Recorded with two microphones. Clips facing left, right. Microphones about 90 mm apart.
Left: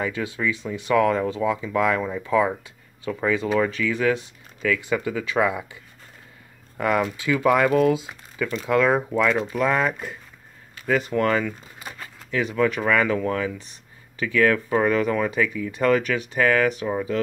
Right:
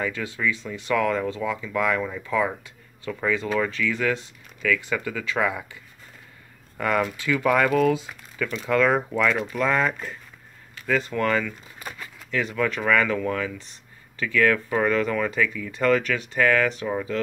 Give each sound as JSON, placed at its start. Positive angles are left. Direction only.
{"t": 0.0, "sound": "speech", "side_deg": 20}
{"t": 6.8, "sound": "speech", "side_deg": 20}